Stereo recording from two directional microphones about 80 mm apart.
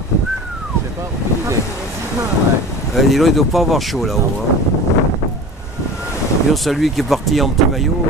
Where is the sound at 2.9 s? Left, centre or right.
Centre.